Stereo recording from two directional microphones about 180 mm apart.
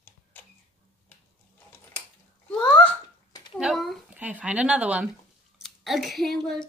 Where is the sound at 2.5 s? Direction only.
10° left (ahead or behind).